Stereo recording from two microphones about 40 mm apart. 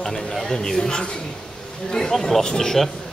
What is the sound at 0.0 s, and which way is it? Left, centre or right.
Speech, centre.